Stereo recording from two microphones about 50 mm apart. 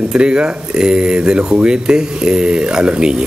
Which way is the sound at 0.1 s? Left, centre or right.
Centre.